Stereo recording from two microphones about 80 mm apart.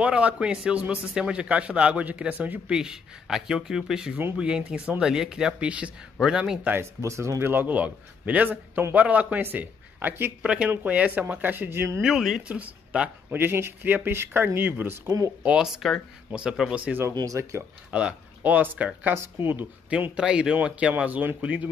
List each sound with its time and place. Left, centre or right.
0.0 s a man's voice: centre
2.7 s a man's voice: centre
6.6 s a man's voice: right
7.0 s a man's voice: right
10.4 s a man's voice: centre
12.0 s speech: centre
12.4 s speech: centre
13.4 s a man's voice: right
15.0 s speech: right
15.4 s a man's voice: centre
17.1 s speech: right
17.9 s speech: centre
19.9 s a man's voice: centre